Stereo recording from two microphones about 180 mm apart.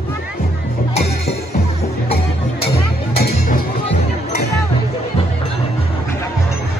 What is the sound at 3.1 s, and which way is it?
Music, 60° left (ahead or behind).